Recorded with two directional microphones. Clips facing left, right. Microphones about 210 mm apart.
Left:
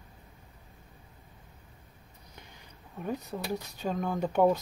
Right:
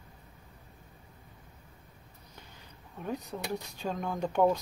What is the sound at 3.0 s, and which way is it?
Speech, 5° left (ahead or behind).